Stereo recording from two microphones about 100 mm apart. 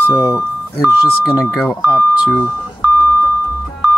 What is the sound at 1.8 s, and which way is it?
Speech, 15° right (ahead or behind).